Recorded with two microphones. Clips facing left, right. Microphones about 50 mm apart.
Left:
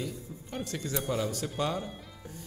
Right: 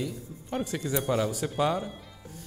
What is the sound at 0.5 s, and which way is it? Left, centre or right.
A man's voice, centre.